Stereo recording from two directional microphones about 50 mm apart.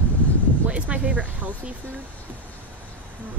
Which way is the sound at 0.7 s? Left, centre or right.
Right.